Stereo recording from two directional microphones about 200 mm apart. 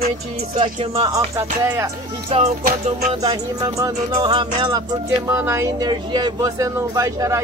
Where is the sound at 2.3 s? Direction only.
35° right (ahead or behind).